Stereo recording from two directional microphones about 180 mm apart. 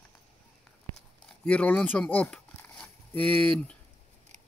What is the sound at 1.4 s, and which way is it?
Speech, 5° left (ahead or behind).